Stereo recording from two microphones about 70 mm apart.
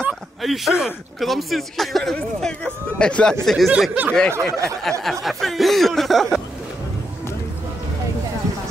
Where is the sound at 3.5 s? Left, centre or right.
Centre.